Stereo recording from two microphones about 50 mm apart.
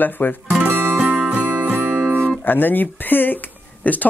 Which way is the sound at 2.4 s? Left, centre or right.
Left.